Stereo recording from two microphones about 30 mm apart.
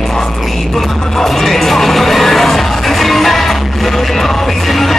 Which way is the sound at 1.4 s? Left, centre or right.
Centre.